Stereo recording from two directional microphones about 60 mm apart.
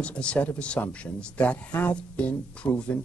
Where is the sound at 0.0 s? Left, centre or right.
Centre.